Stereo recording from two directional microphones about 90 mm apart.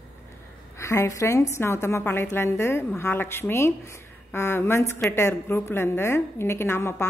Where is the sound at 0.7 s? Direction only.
35° left (ahead or behind).